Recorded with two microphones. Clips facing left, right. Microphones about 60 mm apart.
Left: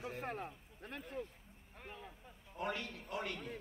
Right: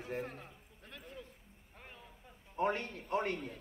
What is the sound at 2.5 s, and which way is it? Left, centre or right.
A man's voice, right.